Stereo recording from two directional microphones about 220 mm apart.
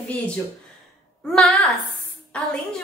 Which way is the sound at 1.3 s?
Centre (ahead or behind).